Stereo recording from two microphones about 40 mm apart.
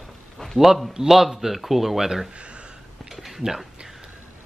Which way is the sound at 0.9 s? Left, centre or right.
Centre.